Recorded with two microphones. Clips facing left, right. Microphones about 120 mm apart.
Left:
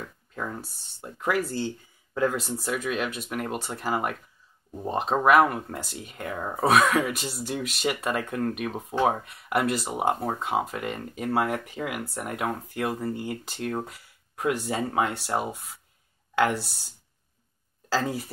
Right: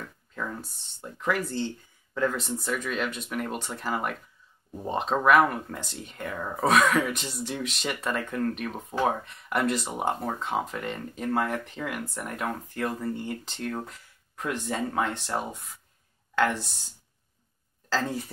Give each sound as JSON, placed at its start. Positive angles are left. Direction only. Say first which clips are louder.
{"t": 1.3, "sound": "speech", "louder": "left 1 dB", "side_deg": 5}
{"t": 6.2, "sound": "speech", "louder": "left 1 dB", "side_deg": 20}
{"t": 6.5, "sound": "speech", "louder": "left 1 dB", "side_deg": 0}
{"t": 17.8, "sound": "speech", "louder": "left 2 dB", "side_deg": 10}